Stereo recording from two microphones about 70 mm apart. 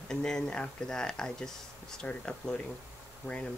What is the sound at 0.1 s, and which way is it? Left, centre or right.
Speech, centre.